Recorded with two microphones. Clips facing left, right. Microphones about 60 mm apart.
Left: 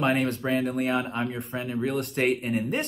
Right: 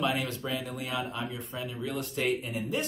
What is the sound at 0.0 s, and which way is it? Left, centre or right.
Speech, left.